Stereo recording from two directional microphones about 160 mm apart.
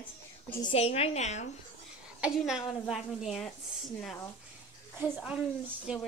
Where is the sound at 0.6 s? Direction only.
35° left (ahead or behind).